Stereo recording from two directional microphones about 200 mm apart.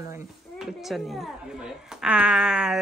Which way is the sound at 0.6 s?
Centre (ahead or behind).